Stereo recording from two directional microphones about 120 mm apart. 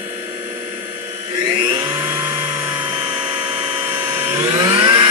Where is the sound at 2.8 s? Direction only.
40° right (ahead or behind).